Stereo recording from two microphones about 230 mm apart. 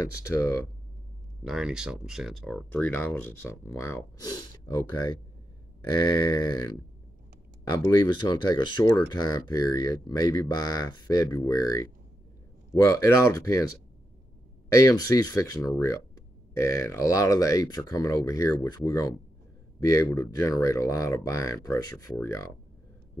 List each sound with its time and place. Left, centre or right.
0.0 s speech: centre
1.4 s speech: centre
5.9 s speech: centre
7.7 s speech: centre
14.8 s speech: centre